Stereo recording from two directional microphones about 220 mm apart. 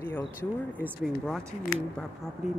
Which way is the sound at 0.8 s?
Centre (ahead or behind).